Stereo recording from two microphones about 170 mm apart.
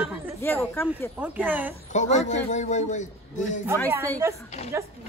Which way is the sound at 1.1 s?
10° right (ahead or behind).